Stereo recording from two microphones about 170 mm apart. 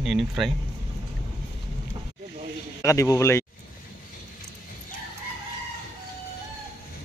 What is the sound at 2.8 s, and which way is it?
Speech, 20° left (ahead or behind).